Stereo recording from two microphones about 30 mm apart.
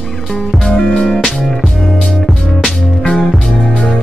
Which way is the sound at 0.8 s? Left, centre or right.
Left.